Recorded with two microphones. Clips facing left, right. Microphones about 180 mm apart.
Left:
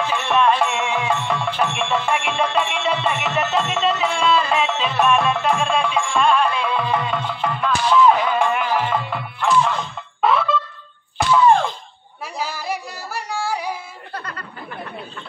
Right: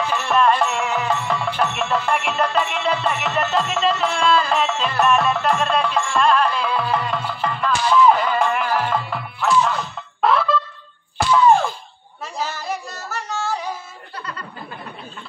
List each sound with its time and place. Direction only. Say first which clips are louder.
0.0 s music: even; 5° left (ahead or behind)
12.4 s music: even; 10° left (ahead or behind)
14.1 s snicker: left 1 dB; 50° left (ahead or behind)